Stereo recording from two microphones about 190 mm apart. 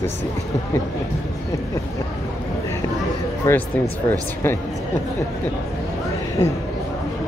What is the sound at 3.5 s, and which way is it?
Speech, 15° left (ahead or behind).